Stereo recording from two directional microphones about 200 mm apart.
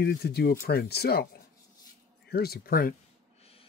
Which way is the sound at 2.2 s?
50° left (ahead or behind).